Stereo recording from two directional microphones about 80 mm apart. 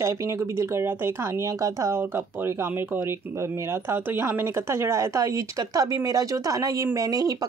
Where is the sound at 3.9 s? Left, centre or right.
Right.